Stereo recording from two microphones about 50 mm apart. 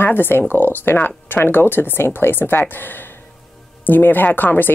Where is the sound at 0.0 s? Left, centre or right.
Left.